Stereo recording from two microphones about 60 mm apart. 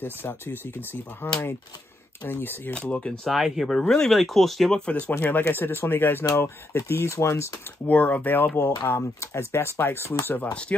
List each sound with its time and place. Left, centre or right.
0.0 s speech: left
2.7 s speech: centre
3.3 s speech: centre
4.7 s speech: left
5.1 s speech: left
7.8 s speech: left
8.5 s speech: left
10.2 s speech: left
10.5 s speech: centre